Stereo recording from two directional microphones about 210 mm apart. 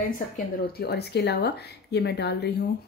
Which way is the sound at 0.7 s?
50° left (ahead or behind).